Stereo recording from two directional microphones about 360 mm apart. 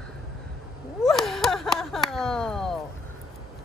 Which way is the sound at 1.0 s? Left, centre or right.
Centre.